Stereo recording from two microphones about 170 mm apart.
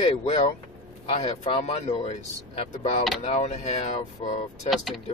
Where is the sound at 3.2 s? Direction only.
40° left (ahead or behind).